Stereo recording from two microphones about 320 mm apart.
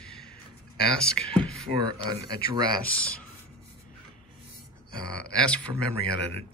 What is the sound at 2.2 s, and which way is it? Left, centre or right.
Speech, centre.